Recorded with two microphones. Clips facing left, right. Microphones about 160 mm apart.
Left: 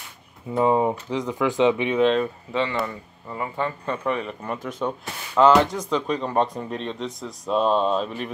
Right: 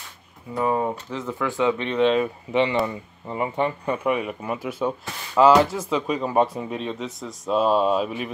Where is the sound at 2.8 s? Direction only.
20° right (ahead or behind).